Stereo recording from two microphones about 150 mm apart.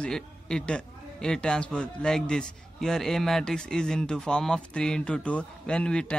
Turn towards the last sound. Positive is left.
turn(degrees=5)  # may be behind; listen again after turning